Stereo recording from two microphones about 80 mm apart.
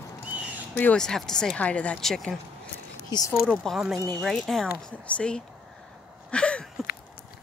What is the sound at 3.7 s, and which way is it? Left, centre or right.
Speech, centre.